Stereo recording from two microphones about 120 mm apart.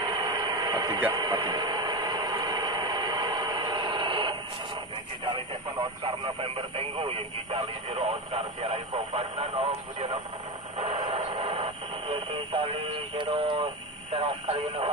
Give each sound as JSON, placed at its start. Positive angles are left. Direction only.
{"t": 0.0, "sound": "vehicle", "side_deg": -30}
{"t": 1.1, "sound": "a sound", "side_deg": -35}
{"t": 5.2, "sound": "speech", "side_deg": -40}
{"t": 6.0, "sound": "speech", "side_deg": -55}
{"t": 11.2, "sound": "speech", "side_deg": -50}